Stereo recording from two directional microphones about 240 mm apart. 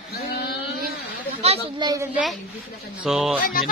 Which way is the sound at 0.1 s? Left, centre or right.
Left.